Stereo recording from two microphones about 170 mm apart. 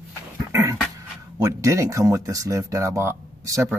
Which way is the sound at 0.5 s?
20° right (ahead or behind).